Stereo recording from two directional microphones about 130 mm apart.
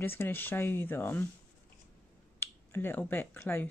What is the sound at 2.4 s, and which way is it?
Speech, 15° left (ahead or behind).